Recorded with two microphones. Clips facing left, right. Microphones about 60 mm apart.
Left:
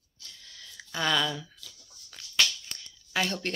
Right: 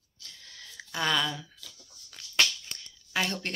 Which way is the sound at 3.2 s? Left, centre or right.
Right.